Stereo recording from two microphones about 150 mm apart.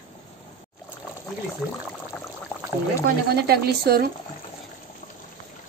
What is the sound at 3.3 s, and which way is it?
Speech, 90° right.